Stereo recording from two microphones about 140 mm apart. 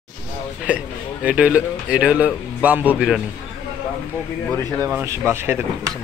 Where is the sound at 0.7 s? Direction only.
10° right (ahead or behind).